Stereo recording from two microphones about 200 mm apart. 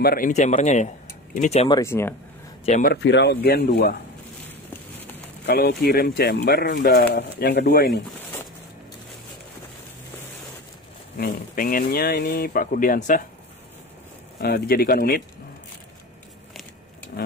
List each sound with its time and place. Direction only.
0.0 s speech: 45° left (ahead or behind)
1.8 s speech: 10° left (ahead or behind)
2.8 s speech: 55° left (ahead or behind)
5.4 s speech: 55° left (ahead or behind)
11.1 s speech: 45° left (ahead or behind)
14.4 s speech: 50° left (ahead or behind)